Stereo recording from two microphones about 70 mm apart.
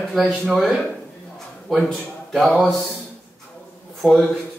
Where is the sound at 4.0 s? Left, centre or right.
Centre.